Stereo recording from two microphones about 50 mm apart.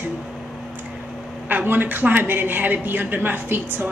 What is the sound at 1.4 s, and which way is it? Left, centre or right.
A woman's voice, right.